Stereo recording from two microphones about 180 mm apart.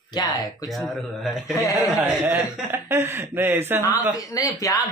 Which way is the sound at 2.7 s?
15° right (ahead or behind).